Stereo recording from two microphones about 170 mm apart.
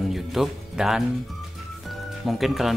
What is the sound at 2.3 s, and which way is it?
Speech, centre (ahead or behind).